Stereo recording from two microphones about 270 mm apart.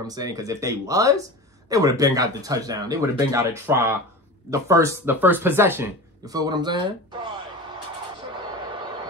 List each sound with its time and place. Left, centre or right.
0.0 s speech: centre